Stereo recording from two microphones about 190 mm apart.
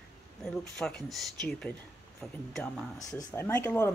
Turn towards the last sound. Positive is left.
turn(degrees=10)  # may be behind; listen again after turning